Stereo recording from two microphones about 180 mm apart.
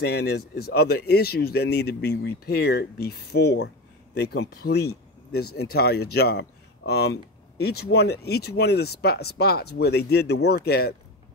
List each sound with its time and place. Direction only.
0.0 s speech: 65° left (ahead or behind)